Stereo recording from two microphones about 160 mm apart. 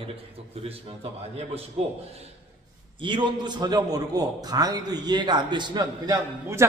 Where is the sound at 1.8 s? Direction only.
35° right (ahead or behind).